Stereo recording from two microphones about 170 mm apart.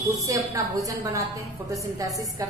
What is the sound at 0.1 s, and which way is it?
A woman's voice, 20° right (ahead or behind).